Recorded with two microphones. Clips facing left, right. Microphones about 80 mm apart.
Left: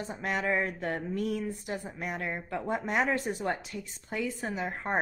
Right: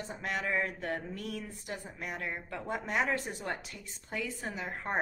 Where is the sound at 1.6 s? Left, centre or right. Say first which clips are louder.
Left 5 dB; centre.